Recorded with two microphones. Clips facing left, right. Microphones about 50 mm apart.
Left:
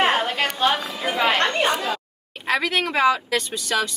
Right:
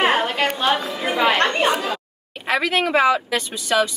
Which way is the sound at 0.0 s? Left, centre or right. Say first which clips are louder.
Right 2 dB; centre.